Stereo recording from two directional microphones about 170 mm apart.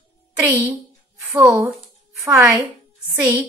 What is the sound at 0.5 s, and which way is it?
A woman's voice, 10° right (ahead or behind).